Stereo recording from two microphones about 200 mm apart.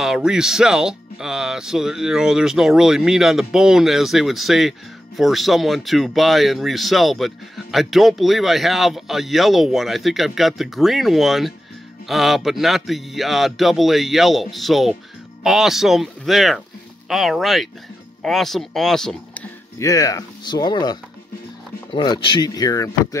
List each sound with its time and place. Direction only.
0.0 s speech: 5° right (ahead or behind)
19.8 s speech: 15° left (ahead or behind)